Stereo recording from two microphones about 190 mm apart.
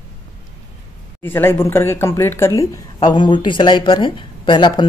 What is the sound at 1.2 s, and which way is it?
Speech, 10° left (ahead or behind).